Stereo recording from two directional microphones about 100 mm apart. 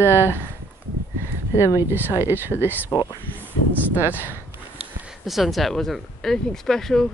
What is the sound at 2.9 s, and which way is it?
Speech, 45° left (ahead or behind).